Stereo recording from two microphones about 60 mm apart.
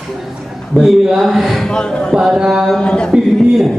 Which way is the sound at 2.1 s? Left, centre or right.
Centre.